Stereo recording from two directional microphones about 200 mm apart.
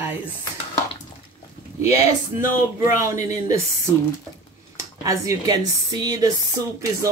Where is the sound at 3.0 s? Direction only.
15° right (ahead or behind).